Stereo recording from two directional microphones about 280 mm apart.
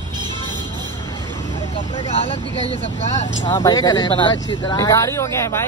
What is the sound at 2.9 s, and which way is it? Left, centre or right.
Speech, left.